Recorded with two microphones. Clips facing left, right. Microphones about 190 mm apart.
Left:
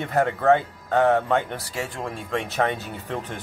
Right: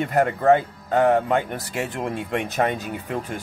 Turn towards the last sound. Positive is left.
turn(degrees=-10)  # may be behind; listen again after turning